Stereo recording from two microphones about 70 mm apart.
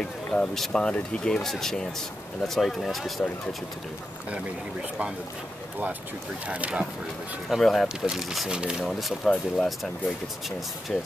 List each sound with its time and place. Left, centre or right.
0.0 s speech: centre
6.5 s speech: centre
7.4 s speech: centre
8.8 s speech: centre